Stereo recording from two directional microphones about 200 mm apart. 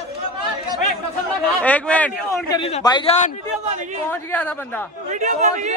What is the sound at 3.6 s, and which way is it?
Speech, 35° right (ahead or behind).